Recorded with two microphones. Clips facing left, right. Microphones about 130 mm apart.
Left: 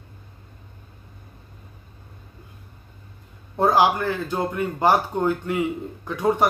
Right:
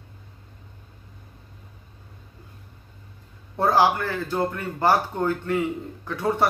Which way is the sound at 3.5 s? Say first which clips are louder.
Left 1 dB; 15° left (ahead or behind).